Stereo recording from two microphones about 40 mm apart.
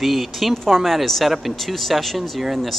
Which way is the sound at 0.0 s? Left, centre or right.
Centre.